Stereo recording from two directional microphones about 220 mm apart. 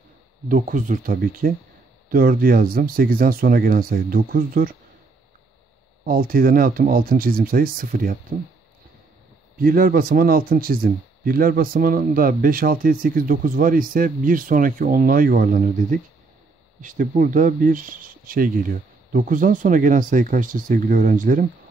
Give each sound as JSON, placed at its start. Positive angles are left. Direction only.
{"t": 0.5, "sound": "speech", "side_deg": -35}
{"t": 6.0, "sound": "speech", "side_deg": -40}
{"t": 9.6, "sound": "speech", "side_deg": -40}